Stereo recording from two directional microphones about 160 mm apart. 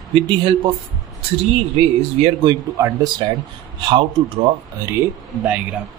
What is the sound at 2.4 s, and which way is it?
Speech, 25° right (ahead or behind).